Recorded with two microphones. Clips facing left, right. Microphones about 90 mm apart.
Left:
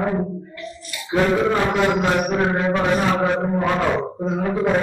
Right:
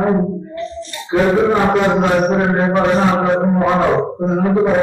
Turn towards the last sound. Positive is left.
turn(degrees=-25)  # may be behind; listen again after turning